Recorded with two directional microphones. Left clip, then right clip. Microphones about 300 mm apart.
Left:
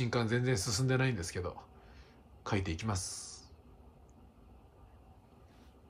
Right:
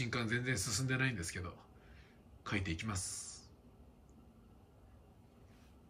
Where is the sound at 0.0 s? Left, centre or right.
Centre.